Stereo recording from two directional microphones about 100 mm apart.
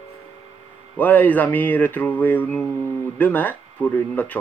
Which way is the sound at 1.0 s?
15° left (ahead or behind).